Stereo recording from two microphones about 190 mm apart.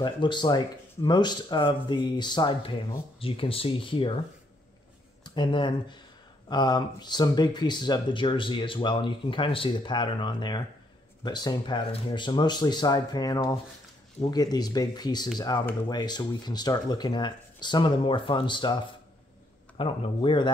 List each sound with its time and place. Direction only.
0.0 s speech: 25° left (ahead or behind)
5.2 s speech: 25° left (ahead or behind)
19.8 s speech: 30° left (ahead or behind)